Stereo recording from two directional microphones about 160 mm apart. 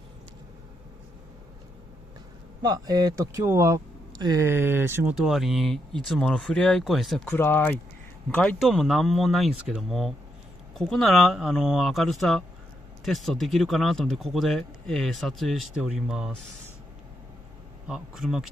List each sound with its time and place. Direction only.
2.6 s speech: 25° right (ahead or behind)
5.1 s speech: centre (ahead or behind)
7.3 s speech: 15° left (ahead or behind)
8.4 s speech: 5° left (ahead or behind)
17.8 s speech: 5° right (ahead or behind)